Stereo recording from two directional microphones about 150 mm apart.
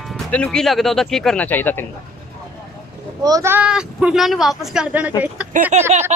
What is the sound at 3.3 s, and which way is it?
Speech, 20° right (ahead or behind).